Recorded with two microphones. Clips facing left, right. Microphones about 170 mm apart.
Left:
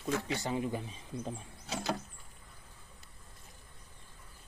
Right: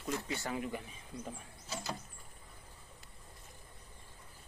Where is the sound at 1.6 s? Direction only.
70° left (ahead or behind).